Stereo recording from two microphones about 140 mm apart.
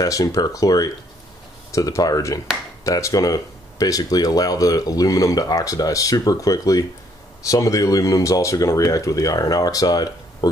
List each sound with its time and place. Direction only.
0.0 s speech: 25° left (ahead or behind)